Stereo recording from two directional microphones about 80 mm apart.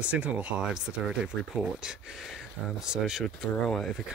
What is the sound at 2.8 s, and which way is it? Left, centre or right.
Speech, centre.